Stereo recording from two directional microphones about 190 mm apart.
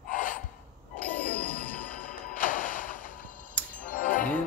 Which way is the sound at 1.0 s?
45° left (ahead or behind).